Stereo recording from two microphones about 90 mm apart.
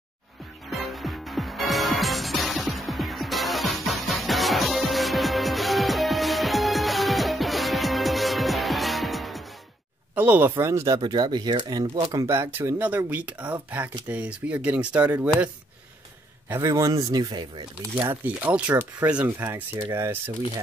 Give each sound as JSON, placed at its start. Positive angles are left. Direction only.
{"t": 0.7, "sound": "music", "side_deg": 0}
{"t": 10.1, "sound": "speech", "side_deg": -20}
{"t": 10.5, "sound": "speech", "side_deg": -30}
{"t": 11.0, "sound": "speech", "side_deg": -55}
{"t": 16.6, "sound": "speech", "side_deg": -40}
{"t": 17.1, "sound": "speech", "side_deg": -50}
{"t": 18.2, "sound": "speech", "side_deg": -15}